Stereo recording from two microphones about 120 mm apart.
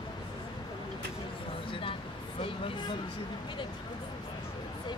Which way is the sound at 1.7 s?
45° left (ahead or behind).